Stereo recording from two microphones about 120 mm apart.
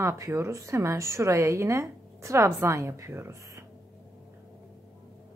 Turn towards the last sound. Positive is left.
turn(degrees=-25)  # may be behind; listen again after turning